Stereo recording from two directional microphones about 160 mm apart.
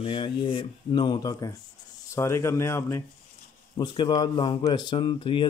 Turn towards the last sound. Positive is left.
turn(degrees=30)  # may be behind; listen again after turning